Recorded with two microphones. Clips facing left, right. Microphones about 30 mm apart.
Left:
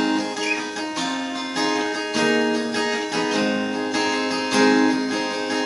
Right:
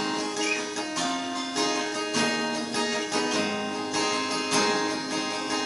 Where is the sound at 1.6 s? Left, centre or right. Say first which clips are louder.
Left 6 dB; centre.